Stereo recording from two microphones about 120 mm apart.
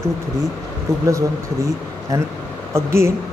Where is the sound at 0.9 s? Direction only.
25° right (ahead or behind).